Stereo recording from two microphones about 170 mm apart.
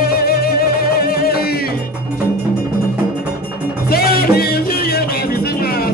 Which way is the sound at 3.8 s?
60° left (ahead or behind).